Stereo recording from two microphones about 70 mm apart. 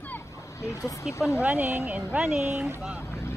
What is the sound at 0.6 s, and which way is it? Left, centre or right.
Speech, left.